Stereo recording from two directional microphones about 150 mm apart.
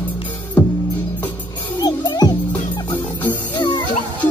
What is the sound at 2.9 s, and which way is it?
Music, 10° left (ahead or behind).